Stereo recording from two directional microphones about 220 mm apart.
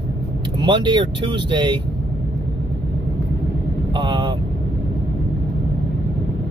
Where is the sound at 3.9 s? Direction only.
20° right (ahead or behind).